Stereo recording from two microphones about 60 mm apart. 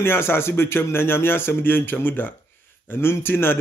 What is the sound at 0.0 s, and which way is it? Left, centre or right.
Speech, left.